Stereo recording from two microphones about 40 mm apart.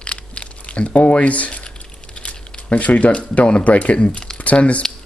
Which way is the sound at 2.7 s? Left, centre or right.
Left.